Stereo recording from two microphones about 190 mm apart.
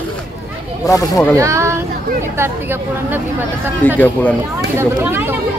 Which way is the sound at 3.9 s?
10° left (ahead or behind).